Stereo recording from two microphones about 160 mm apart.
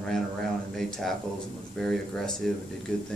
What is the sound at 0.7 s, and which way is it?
A man's voice, centre (ahead or behind).